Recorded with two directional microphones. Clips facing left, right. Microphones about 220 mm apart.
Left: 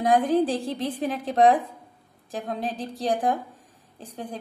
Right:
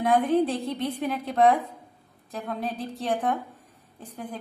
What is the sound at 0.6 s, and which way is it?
Speech, 90° left.